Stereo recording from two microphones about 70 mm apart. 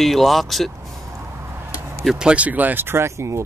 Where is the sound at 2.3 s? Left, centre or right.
Right.